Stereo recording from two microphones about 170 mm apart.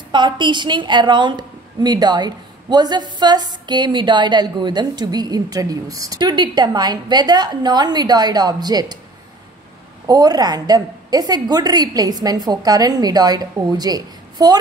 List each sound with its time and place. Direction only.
0.1 s a woman's voice: 25° right (ahead or behind)
10.0 s a woman's voice: 25° right (ahead or behind)